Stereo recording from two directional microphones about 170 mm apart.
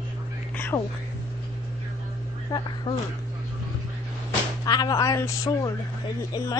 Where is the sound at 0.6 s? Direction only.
10° left (ahead or behind).